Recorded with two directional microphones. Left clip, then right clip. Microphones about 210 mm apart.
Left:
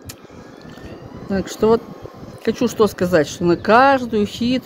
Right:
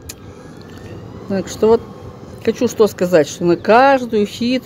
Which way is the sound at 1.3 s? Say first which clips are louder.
Right 3 dB; centre (ahead or behind).